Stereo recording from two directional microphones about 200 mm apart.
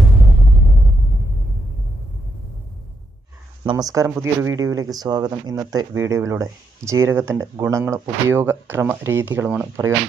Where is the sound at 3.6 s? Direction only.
20° right (ahead or behind).